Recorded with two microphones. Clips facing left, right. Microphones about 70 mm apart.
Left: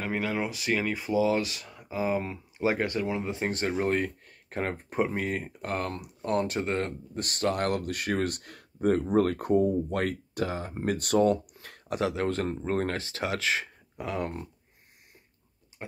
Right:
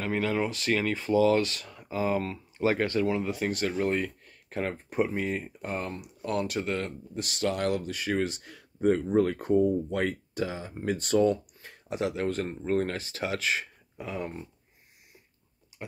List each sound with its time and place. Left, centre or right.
0.0 s speech: centre; by 5.0 s left
5.1 s speech: left
5.6 s speech: left
6.2 s speech: left
7.2 s speech: left
12.6 s speech: left
12.9 s speech: left